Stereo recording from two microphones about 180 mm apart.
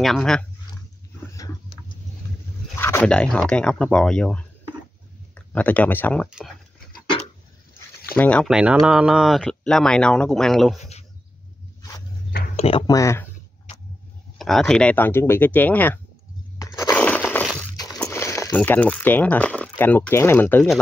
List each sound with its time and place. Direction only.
0.0 s speech: centre (ahead or behind)
2.8 s speech: 10° left (ahead or behind)
8.1 s speech: 10° left (ahead or behind)
8.5 s speech: 5° right (ahead or behind)
10.8 s a sound: 35° left (ahead or behind)
12.5 s a sound: 35° left (ahead or behind)
12.8 s speech: 20° left (ahead or behind)
14.4 s speech: centre (ahead or behind)
16.5 s a sound: 20° left (ahead or behind)
18.6 s speech: 10° left (ahead or behind)